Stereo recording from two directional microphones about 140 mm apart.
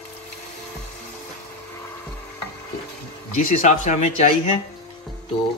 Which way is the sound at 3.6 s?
55° left (ahead or behind).